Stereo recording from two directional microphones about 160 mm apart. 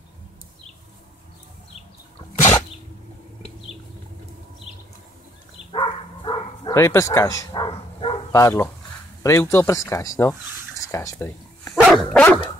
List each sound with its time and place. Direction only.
5.7 s bow-wow: 30° left (ahead or behind)
6.8 s bow-wow: 15° left (ahead or behind); by 8.2 s 35° left (ahead or behind)
8.3 s speech: 20° left (ahead or behind)
10.8 s bow-wow: 20° left (ahead or behind)
11.9 s dog: 5° left (ahead or behind)